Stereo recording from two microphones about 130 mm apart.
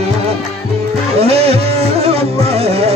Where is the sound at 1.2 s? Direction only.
50° right (ahead or behind).